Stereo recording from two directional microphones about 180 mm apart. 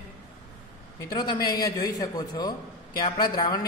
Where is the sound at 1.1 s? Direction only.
25° left (ahead or behind).